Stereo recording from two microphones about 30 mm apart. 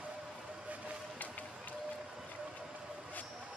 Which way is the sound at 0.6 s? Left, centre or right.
Right.